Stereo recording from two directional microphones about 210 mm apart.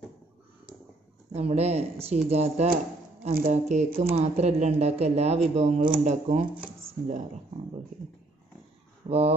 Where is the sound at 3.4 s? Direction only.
30° right (ahead or behind).